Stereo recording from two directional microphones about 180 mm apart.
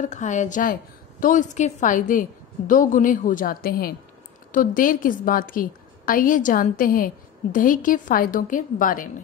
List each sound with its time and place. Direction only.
0.0 s a woman's voice: 40° left (ahead or behind)